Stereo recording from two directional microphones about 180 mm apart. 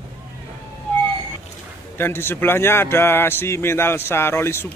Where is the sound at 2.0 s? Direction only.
15° left (ahead or behind).